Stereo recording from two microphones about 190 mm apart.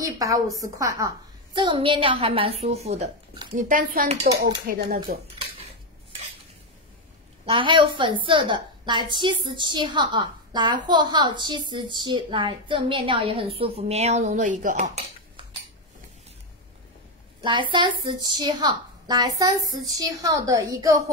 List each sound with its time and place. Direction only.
0.0 s a woman's voice: 20° right (ahead or behind); by 4.1 s 45° right (ahead or behind)
4.1 s speech: 30° right (ahead or behind)
5.1 s speech: 50° right (ahead or behind)
7.4 s a woman's voice: 25° right (ahead or behind)
17.4 s a woman's voice: 25° right (ahead or behind)